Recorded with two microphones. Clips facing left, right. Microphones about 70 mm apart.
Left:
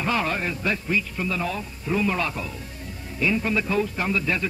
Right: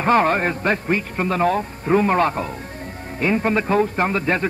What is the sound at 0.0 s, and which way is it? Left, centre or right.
A man's voice, right.